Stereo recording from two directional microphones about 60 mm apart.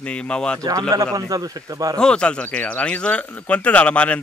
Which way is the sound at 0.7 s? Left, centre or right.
Right.